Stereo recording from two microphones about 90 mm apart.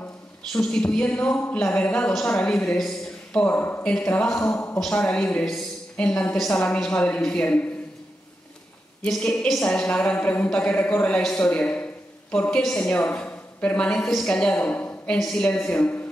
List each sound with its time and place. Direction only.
0.5 s a woman's voice: 10° left (ahead or behind)
9.0 s a woman's voice: 10° left (ahead or behind)
15.1 s a woman's voice: 5° left (ahead or behind)